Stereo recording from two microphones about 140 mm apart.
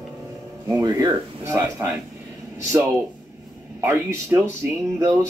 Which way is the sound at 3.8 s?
20° right (ahead or behind).